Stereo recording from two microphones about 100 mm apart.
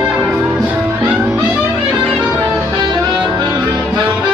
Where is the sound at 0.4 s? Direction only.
15° right (ahead or behind).